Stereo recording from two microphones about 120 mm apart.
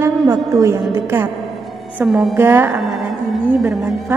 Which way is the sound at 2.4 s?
20° right (ahead or behind).